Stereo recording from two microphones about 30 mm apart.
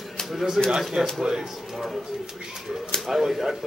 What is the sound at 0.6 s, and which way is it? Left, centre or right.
A man's voice, centre.